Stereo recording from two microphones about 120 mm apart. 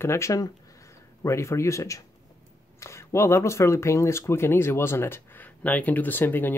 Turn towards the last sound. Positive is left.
turn(degrees=15)  # may be behind; listen again after turning